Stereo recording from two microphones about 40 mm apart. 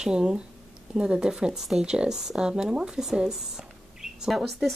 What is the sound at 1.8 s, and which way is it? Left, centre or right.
Speech, centre.